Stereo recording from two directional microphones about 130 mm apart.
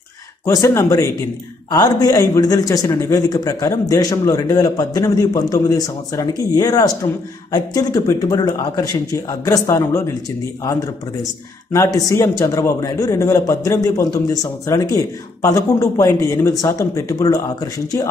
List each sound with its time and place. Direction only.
0.5 s a man's voice: 25° left (ahead or behind)